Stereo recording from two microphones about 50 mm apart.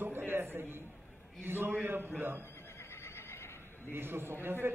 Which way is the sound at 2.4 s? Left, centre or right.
Left.